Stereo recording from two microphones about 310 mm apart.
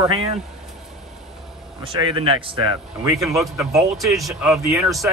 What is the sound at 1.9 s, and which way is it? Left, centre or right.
Speech, centre.